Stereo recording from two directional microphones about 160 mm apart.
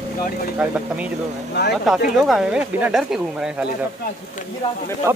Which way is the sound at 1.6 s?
90° left.